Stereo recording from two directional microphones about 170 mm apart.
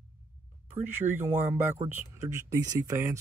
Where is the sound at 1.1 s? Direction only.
15° right (ahead or behind).